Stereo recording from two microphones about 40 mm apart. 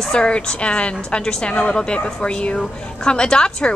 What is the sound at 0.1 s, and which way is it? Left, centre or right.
A woman's voice, left.